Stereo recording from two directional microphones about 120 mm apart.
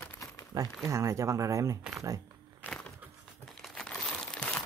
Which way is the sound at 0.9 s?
25° right (ahead or behind).